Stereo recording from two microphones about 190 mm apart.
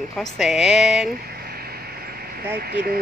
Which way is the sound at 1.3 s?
55° right (ahead or behind).